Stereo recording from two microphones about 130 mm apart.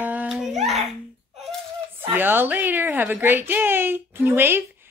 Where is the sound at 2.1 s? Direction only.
15° right (ahead or behind).